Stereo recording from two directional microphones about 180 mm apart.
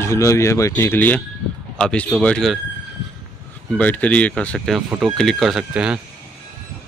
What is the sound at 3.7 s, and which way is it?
Speech, 10° left (ahead or behind).